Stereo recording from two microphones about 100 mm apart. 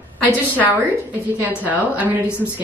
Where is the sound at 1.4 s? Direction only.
15° right (ahead or behind).